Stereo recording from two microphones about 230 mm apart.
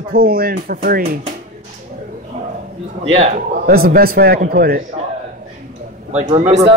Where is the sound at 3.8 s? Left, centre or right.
Right.